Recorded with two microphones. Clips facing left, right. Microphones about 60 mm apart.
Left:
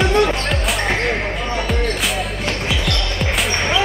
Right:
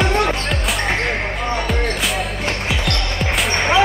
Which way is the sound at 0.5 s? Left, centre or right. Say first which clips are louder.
Left 1 dB; centre.